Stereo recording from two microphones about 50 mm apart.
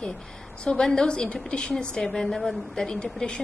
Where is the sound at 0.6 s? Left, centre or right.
Centre.